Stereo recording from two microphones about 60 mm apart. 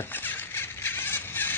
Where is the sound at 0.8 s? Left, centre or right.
Left.